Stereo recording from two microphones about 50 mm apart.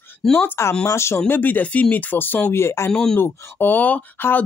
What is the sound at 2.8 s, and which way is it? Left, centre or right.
Speech, centre.